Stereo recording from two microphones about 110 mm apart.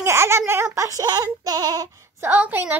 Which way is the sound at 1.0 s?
35° right (ahead or behind).